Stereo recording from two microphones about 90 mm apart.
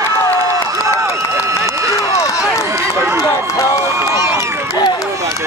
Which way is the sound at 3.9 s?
30° right (ahead or behind).